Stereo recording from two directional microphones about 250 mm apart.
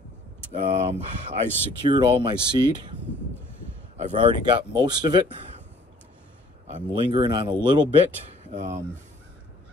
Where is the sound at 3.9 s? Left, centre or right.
Centre.